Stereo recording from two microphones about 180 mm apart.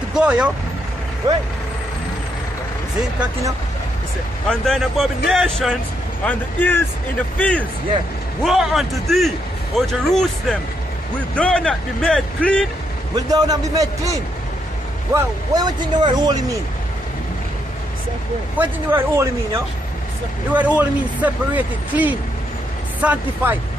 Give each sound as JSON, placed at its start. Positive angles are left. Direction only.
{"t": 0.1, "sound": "speech", "side_deg": -5}
{"t": 4.5, "sound": "speech", "side_deg": 0}
{"t": 13.1, "sound": "speech", "side_deg": -20}
{"t": 15.1, "sound": "speech", "side_deg": -20}
{"t": 18.6, "sound": "speech", "side_deg": -10}